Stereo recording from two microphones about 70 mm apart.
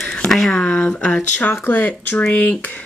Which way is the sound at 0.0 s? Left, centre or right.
Centre.